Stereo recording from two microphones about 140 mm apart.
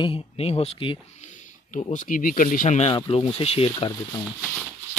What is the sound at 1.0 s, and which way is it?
Speech, 55° left (ahead or behind).